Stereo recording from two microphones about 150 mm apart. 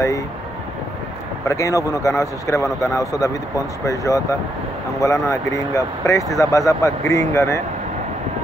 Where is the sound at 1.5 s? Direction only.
20° left (ahead or behind).